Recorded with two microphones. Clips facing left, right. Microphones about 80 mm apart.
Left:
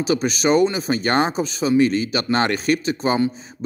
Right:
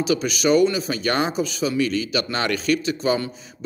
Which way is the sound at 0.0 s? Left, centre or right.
Left.